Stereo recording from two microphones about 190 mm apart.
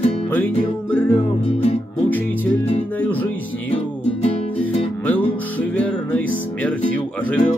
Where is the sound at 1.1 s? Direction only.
30° left (ahead or behind).